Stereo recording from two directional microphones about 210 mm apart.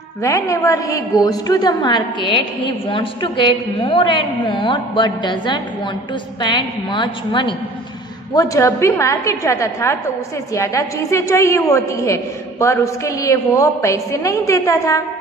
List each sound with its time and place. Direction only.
0.2 s a woman's voice: 15° left (ahead or behind)